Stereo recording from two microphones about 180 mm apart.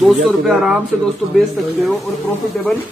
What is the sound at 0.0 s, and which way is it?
Speech, centre (ahead or behind).